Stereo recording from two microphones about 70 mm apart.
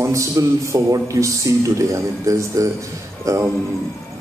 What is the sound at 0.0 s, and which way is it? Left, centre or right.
A man's voice, right.